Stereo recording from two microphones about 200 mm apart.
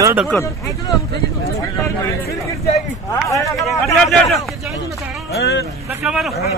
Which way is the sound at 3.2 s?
15° left (ahead or behind).